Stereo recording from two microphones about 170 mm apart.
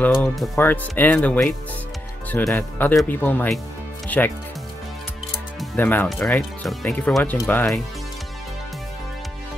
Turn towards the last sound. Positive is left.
turn(degrees=15)  # may be behind; listen again after turning